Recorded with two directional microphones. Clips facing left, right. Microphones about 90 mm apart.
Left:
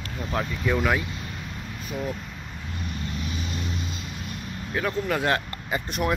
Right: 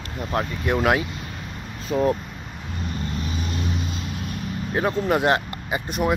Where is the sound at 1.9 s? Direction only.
35° right (ahead or behind).